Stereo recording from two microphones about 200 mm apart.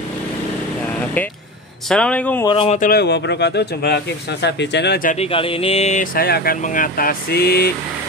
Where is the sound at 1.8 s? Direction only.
5° left (ahead or behind).